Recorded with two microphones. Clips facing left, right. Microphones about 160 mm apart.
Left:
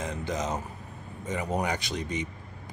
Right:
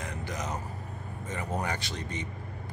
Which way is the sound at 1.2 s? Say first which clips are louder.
Left 4 dB; 15° left (ahead or behind).